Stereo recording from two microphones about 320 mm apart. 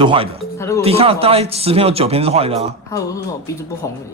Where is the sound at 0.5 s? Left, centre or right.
Centre.